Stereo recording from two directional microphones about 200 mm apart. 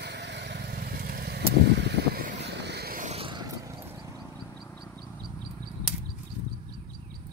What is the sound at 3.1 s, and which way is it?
Vehicle, 25° right (ahead or behind).